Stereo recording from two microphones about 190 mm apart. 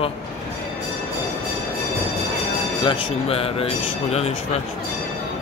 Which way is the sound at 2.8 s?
30° left (ahead or behind).